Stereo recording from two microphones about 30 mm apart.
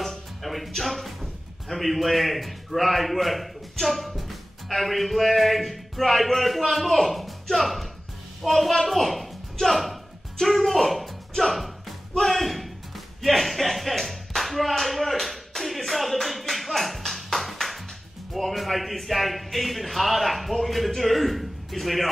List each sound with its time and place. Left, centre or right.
0.0 s music: centre
0.5 s speech: centre
12.2 s a sound: centre
16.2 s music: centre
18.3 s speech: centre